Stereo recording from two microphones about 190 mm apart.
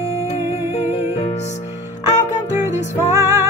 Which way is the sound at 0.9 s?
35° left (ahead or behind).